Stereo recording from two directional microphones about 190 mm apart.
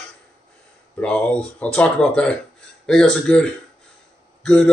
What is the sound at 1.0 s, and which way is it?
Speech, 5° left (ahead or behind).